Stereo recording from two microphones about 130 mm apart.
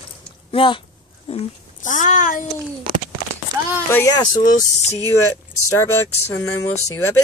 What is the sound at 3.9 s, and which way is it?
Speech, 25° left (ahead or behind).